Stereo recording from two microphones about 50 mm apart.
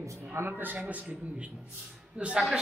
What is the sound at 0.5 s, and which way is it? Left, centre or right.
Speech, right.